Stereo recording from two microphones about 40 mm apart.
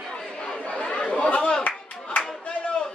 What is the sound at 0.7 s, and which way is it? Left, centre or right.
Chatter, left.